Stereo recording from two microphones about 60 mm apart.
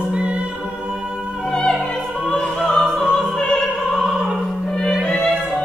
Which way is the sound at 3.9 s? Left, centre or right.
Centre.